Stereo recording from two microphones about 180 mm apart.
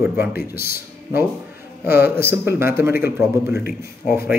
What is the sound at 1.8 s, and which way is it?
A man's voice, 10° right (ahead or behind).